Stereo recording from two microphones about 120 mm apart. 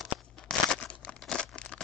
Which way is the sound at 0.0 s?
5° left (ahead or behind).